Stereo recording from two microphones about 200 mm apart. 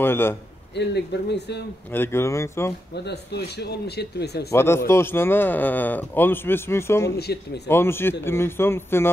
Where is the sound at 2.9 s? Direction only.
55° left (ahead or behind).